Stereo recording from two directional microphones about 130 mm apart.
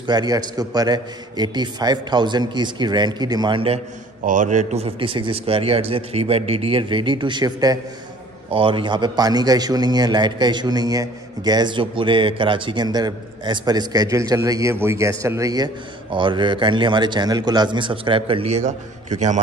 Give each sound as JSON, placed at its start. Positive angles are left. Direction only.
{"t": 0.0, "sound": "a man's voice", "side_deg": -35}
{"t": 4.2, "sound": "a man's voice", "side_deg": -85}
{"t": 8.5, "sound": "a man's voice", "side_deg": -45}
{"t": 18.5, "sound": "a man's voice", "side_deg": -65}